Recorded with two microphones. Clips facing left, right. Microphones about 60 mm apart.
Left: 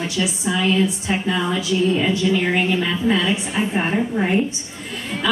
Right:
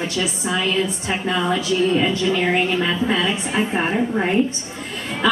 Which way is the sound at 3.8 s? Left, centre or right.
Centre.